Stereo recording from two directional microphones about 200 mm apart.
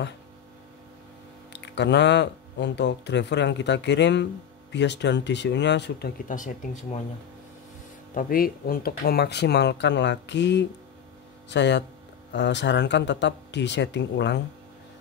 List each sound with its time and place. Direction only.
1.5 s speech: 60° left (ahead or behind); by 7.0 s 35° left (ahead or behind)
8.1 s speech: 45° left (ahead or behind); by 14.4 s 60° left (ahead or behind)